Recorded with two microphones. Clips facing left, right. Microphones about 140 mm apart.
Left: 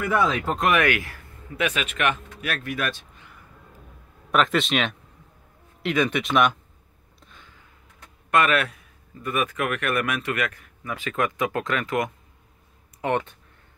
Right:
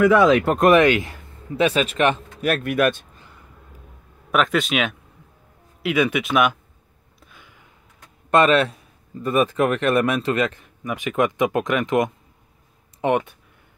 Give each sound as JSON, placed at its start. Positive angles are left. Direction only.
{"t": 0.0, "sound": "speech", "side_deg": -90}
{"t": 0.7, "sound": "speech", "side_deg": -20}
{"t": 2.4, "sound": "speech", "side_deg": -50}
{"t": 4.3, "sound": "speech", "side_deg": 0}
{"t": 7.2, "sound": "a sound", "side_deg": -10}
{"t": 8.3, "sound": "speech", "side_deg": -30}